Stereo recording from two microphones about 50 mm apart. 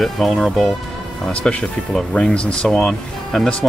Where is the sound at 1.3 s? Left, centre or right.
Left; by 3.5 s centre.